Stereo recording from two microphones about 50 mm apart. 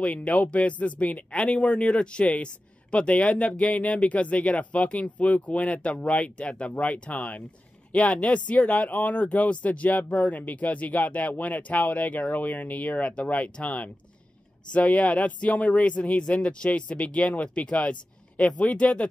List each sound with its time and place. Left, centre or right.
0.0 s speech: left